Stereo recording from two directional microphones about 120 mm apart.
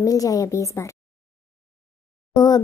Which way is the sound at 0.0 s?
30° left (ahead or behind).